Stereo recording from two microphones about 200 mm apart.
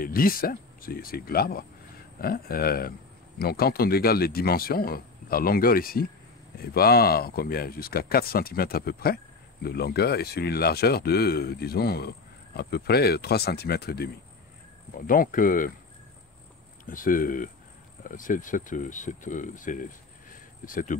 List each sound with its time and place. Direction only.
0.0 s speech: 45° left (ahead or behind)
16.8 s speech: 40° left (ahead or behind)